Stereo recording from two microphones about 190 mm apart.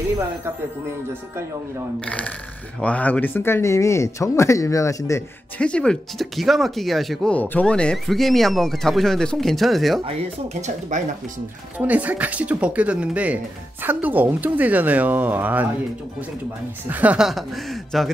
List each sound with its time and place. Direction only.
2.0 s speech: 5° left (ahead or behind)
10.0 s speech: 40° right (ahead or behind)
11.8 s speech: 10° right (ahead or behind)
16.9 s speech: 5° right (ahead or behind)